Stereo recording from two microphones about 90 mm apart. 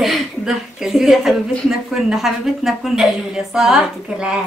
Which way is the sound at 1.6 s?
5° right (ahead or behind).